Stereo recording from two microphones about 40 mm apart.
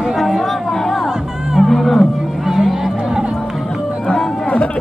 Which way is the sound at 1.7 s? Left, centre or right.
Centre.